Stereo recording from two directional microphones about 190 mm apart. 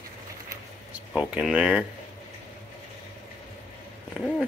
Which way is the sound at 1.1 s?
5° right (ahead or behind).